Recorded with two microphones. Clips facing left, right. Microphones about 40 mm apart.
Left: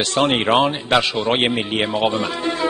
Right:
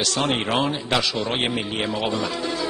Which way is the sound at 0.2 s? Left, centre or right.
Left.